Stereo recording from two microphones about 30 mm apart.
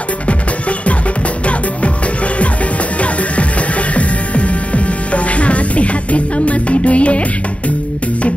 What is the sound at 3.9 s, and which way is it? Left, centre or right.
Music, left.